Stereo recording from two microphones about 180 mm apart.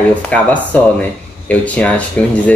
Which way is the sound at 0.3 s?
10° left (ahead or behind).